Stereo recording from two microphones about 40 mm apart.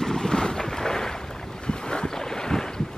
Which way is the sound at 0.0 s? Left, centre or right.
Centre.